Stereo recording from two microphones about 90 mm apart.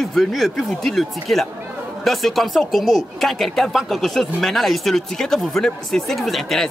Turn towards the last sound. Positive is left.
turn(degrees=0)  # may be behind; listen again after turning